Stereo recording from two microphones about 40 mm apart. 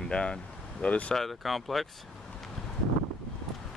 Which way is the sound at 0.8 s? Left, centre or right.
Left.